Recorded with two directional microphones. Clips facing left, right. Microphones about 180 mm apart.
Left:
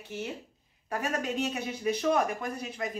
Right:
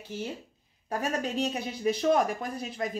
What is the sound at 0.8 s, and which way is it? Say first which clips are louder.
Speech: right 1 dB; 35° right (ahead or behind).